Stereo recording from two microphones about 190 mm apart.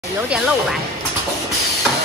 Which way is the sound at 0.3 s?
5° right (ahead or behind).